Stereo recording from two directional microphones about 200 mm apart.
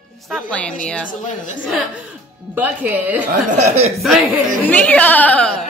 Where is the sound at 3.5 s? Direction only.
35° right (ahead or behind).